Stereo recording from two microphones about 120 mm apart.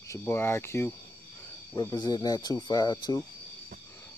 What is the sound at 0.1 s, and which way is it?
Speech, 20° left (ahead or behind).